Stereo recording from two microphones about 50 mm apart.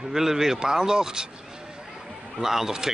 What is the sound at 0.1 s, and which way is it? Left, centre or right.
Speech, centre.